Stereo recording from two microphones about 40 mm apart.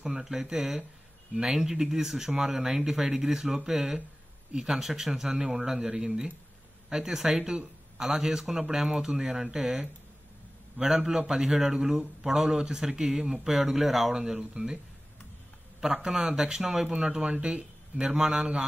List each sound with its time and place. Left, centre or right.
0.0 s speech: centre
14.1 s speech: centre
16.0 s speech: centre
16.9 s speech: right